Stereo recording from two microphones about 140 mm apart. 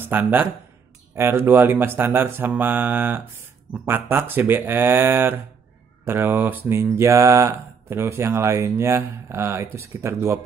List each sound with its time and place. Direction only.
0.0 s speech: 15° right (ahead or behind)
1.1 s mantra: 15° right (ahead or behind)
9.8 s speech: 20° right (ahead or behind)